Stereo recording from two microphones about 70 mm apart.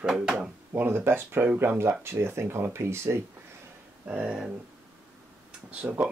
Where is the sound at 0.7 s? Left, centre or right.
Right.